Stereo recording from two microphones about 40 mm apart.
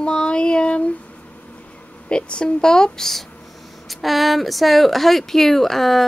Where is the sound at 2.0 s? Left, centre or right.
Left.